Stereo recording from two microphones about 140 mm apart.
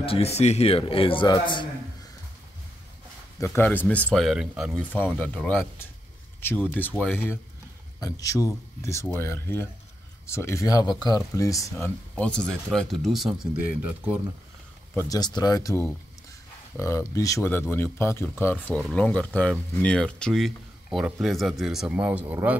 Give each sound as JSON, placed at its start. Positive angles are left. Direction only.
{"t": 0.0, "sound": "a man's voice", "side_deg": 45}
{"t": 3.3, "sound": "speech", "side_deg": 20}
{"t": 4.7, "sound": "speech", "side_deg": 10}
{"t": 8.0, "sound": "speech", "side_deg": 25}
{"t": 12.2, "sound": "speech", "side_deg": 5}
{"t": 15.0, "sound": "speech", "side_deg": 25}